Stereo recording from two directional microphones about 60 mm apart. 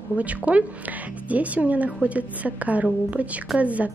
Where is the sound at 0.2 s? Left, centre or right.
Right.